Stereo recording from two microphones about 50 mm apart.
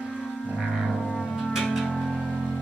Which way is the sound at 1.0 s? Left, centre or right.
Centre.